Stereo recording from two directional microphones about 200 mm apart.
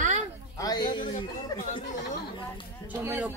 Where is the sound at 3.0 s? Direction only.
10° right (ahead or behind).